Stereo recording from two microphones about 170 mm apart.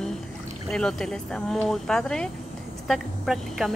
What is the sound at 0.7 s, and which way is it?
A woman's voice, 5° left (ahead or behind).